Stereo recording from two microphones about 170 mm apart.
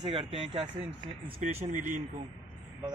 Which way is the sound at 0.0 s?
30° right (ahead or behind).